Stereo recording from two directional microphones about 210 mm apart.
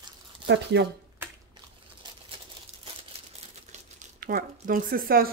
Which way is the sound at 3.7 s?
45° right (ahead or behind).